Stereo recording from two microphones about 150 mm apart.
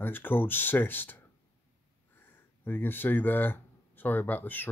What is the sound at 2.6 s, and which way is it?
Speech, 15° left (ahead or behind).